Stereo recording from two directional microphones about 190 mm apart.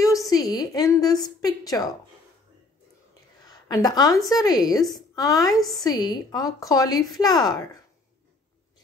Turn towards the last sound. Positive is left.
turn(degrees=20)  # may be behind; listen again after turning